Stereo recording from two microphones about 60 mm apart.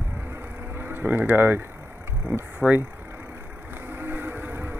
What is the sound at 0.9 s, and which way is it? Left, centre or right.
Speech, right.